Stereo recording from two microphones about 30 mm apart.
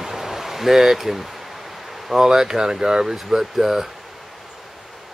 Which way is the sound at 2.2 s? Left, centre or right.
Centre.